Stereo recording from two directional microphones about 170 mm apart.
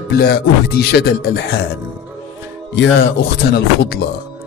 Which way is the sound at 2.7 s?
90° left.